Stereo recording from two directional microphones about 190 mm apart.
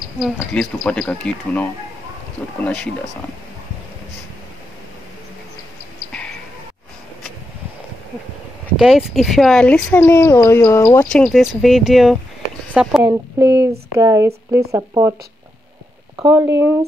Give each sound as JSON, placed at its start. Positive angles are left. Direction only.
{"t": 0.2, "sound": "speech", "side_deg": 0}
{"t": 8.7, "sound": "speech", "side_deg": 0}
{"t": 11.1, "sound": "speech", "side_deg": 0}
{"t": 13.0, "sound": "speech", "side_deg": -15}
{"t": 16.3, "sound": "speech", "side_deg": -15}